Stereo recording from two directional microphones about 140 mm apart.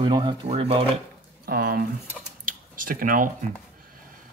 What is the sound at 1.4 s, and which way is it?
Speech, 90° right.